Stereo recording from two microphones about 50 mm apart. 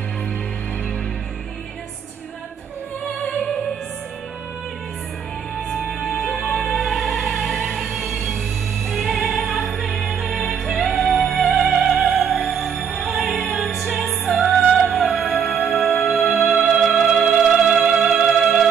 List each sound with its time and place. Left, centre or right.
5.9 s music: centre